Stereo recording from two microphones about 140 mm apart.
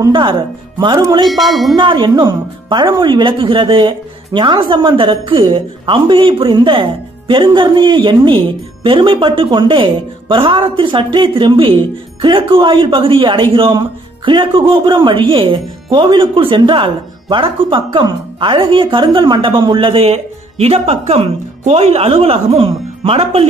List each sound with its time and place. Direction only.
0.1 s speech: 35° right (ahead or behind)
1.2 s music: centre (ahead or behind)
1.8 s speech: 35° right (ahead or behind)